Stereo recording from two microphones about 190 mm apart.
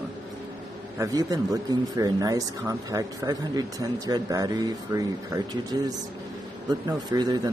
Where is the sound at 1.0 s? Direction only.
20° right (ahead or behind).